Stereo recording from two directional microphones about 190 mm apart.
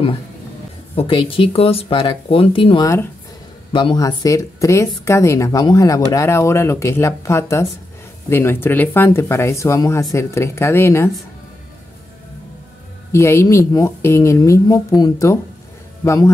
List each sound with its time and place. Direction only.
0.9 s speech: 30° left (ahead or behind); by 11.1 s 15° left (ahead or behind)
13.1 s speech: 15° left (ahead or behind)